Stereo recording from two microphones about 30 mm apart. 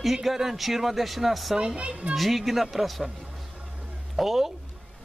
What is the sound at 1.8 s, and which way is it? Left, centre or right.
Speech, right.